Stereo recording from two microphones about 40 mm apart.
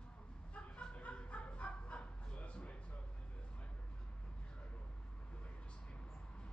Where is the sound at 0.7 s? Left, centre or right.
Left.